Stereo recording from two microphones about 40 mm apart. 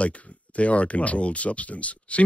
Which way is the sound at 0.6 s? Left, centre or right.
Left.